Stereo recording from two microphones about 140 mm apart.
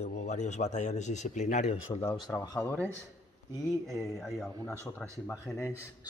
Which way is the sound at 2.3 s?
25° left (ahead or behind).